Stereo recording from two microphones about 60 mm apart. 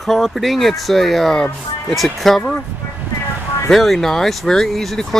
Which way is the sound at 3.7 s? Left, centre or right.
Centre.